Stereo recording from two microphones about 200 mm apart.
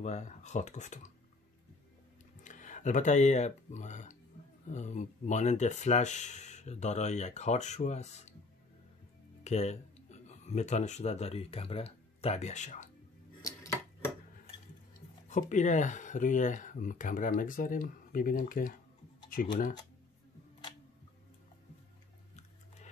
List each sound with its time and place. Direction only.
0.0 s speech: 35° left (ahead or behind)
2.4 s speech: 40° left (ahead or behind)
9.4 s speech: 35° left (ahead or behind)
13.4 s dishes: 15° left (ahead or behind)
15.2 s speech: 40° left (ahead or behind)